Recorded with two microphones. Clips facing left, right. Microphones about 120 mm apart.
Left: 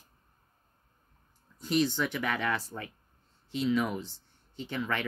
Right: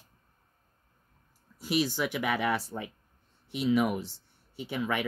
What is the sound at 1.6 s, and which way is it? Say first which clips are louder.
Speech: left 1 dB; 10° right (ahead or behind).